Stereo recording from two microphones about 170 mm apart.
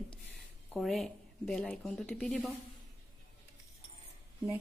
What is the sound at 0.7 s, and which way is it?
Speech, centre (ahead or behind).